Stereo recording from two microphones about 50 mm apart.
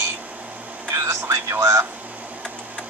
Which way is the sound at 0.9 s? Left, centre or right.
Right.